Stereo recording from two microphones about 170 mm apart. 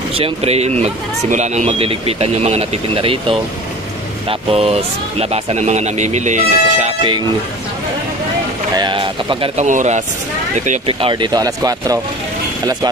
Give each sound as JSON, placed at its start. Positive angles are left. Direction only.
{"t": 0.1, "sound": "speech", "side_deg": -35}
{"t": 8.7, "sound": "speech", "side_deg": -30}
{"t": 9.6, "sound": "speech", "side_deg": -45}
{"t": 10.9, "sound": "speech", "side_deg": -30}